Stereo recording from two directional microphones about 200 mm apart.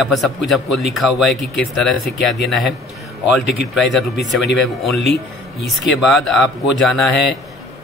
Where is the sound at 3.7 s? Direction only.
Centre (ahead or behind).